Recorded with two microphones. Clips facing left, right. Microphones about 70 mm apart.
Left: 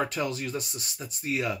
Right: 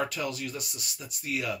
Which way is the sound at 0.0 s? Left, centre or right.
Left.